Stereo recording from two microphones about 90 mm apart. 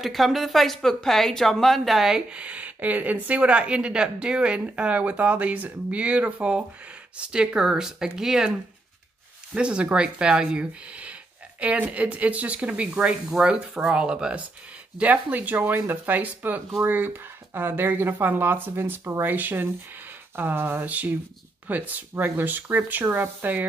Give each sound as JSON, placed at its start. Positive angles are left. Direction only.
{"t": 0.0, "sound": "speech", "side_deg": 0}